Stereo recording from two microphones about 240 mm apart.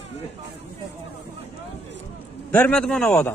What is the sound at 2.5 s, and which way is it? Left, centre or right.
Speech, centre.